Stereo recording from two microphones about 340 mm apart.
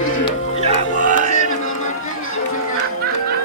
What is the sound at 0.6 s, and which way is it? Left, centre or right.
Music, right.